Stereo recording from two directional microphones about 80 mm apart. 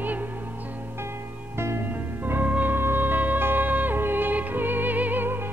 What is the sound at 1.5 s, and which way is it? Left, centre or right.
Music, right.